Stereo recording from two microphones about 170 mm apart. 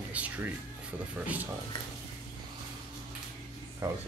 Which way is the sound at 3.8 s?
20° right (ahead or behind).